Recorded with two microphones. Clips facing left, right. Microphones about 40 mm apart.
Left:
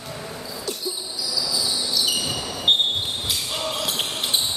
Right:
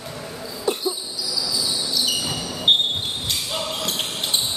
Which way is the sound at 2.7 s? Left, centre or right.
Centre.